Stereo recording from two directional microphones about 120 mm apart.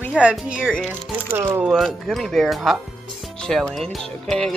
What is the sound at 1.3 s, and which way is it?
Speech, 20° right (ahead or behind).